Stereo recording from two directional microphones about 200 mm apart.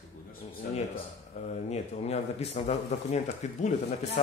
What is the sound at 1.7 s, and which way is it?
Speech, 30° left (ahead or behind).